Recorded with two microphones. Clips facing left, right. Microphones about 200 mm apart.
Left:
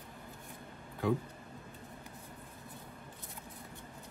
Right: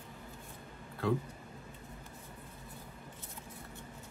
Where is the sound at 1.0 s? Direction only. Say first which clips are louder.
Even; 15° left (ahead or behind).